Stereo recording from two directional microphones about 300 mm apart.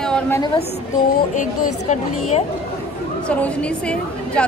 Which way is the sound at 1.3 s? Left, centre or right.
Left.